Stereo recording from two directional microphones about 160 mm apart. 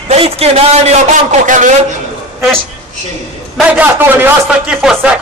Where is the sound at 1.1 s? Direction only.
50° right (ahead or behind).